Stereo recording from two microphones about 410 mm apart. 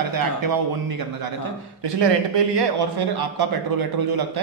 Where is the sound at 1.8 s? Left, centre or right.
Right.